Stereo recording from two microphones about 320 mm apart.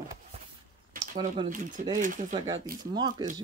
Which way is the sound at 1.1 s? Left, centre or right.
Centre.